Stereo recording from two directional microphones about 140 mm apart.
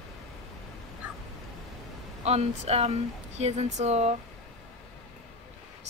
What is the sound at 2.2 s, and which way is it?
A woman's voice, 50° right (ahead or behind).